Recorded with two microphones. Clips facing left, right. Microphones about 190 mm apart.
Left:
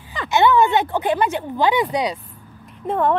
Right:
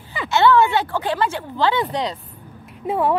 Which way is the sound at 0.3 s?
15° left (ahead or behind).